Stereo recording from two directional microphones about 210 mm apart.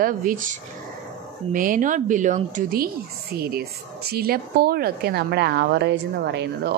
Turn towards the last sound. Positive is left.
turn(degrees=-55)  # may be behind; listen again after turning